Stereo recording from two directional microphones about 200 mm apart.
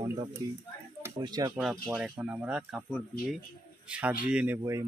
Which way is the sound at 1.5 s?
5° right (ahead or behind).